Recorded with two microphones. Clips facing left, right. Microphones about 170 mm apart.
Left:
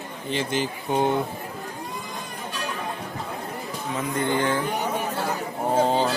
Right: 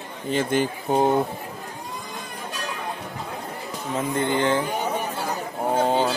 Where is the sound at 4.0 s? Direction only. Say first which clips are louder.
Right 2 dB; 25° right (ahead or behind).